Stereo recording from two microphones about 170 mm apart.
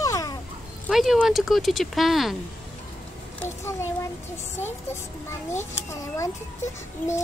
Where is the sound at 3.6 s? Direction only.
15° left (ahead or behind).